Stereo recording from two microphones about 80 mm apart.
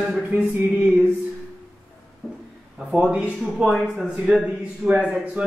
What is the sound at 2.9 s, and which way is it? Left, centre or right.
A man's voice, centre.